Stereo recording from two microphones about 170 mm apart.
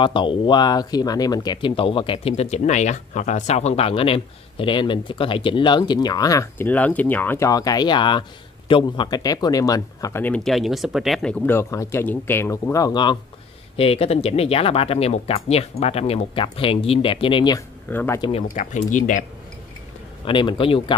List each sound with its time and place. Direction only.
0.0 s speech: 30° left (ahead or behind); by 11.3 s centre (ahead or behind)
11.4 s speech: 15° left (ahead or behind)
17.8 s speech: 10° left (ahead or behind)
18.5 s speech: 50° left (ahead or behind)
20.2 s speech: 30° left (ahead or behind)